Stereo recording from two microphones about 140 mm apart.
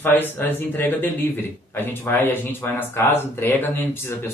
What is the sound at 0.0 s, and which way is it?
Speech, 15° left (ahead or behind).